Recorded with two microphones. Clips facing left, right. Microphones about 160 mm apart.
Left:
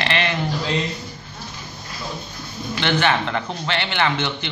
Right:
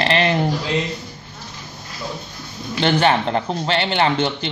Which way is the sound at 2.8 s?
35° right (ahead or behind).